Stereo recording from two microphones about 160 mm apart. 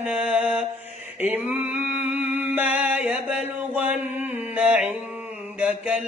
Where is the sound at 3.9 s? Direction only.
45° left (ahead or behind).